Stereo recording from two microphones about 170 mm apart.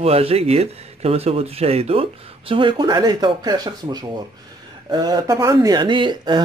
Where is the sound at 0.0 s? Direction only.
35° right (ahead or behind).